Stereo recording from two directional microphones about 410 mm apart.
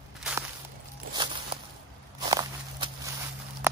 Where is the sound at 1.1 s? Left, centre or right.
Centre.